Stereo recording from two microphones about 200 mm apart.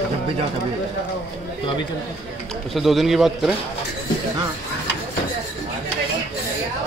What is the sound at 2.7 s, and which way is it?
Speech, centre (ahead or behind).